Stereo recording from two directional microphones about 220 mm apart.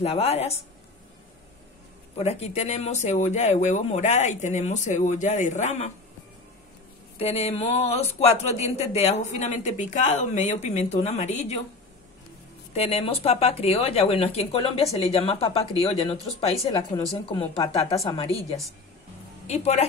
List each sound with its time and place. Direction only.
0.0 s speech: 30° left (ahead or behind)
2.1 s speech: 30° left (ahead or behind)
7.2 s speech: 30° left (ahead or behind)
12.7 s speech: 30° left (ahead or behind)
16.6 s a woman's voice: 15° left (ahead or behind)